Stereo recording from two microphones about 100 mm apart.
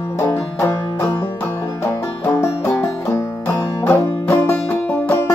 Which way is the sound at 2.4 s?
25° left (ahead or behind).